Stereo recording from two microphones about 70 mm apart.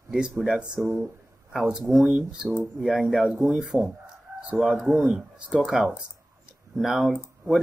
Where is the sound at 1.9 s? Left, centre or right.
Centre.